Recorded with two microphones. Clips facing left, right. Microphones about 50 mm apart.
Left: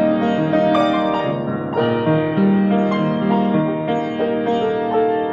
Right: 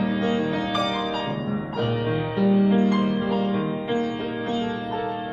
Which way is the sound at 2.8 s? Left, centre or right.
Left.